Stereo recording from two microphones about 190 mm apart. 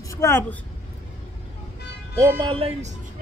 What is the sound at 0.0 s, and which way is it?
Speech, 15° left (ahead or behind).